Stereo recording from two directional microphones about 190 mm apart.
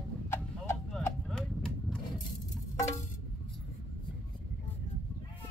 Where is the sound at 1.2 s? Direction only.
5° left (ahead or behind).